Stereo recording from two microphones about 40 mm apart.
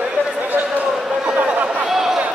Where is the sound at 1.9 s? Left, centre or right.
Centre.